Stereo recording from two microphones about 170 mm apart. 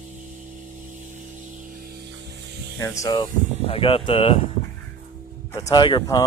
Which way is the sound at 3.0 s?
25° left (ahead or behind).